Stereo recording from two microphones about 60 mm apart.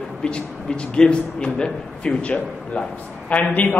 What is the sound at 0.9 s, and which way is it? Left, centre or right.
A man's voice, centre.